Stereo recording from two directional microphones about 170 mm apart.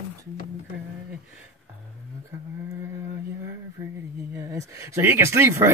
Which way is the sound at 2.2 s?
15° right (ahead or behind).